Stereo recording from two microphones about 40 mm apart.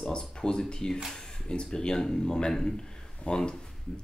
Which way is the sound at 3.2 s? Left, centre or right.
Left.